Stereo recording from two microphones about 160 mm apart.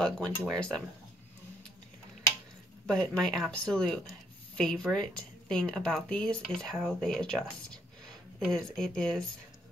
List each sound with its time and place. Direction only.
0.0 s speech: 5° left (ahead or behind)
2.9 s speech: 5° left (ahead or behind)